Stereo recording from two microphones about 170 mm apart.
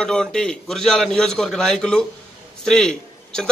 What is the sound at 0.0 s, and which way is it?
A man's voice, 5° left (ahead or behind).